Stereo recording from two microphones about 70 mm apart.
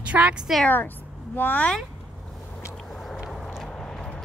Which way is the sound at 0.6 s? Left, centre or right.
Left.